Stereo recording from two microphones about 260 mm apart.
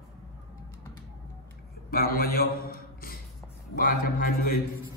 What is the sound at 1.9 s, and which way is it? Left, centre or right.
A man's voice, left.